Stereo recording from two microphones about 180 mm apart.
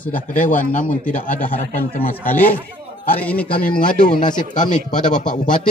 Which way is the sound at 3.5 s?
50° left (ahead or behind).